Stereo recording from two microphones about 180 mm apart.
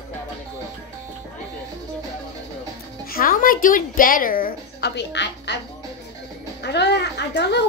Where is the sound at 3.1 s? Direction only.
55° left (ahead or behind); by 5.6 s 75° left (ahead or behind).